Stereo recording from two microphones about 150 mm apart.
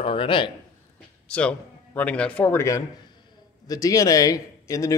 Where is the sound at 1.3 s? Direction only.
5° left (ahead or behind).